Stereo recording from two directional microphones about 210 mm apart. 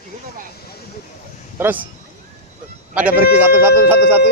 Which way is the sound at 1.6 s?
10° right (ahead or behind).